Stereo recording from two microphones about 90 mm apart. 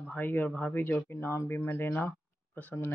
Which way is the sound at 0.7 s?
25° left (ahead or behind).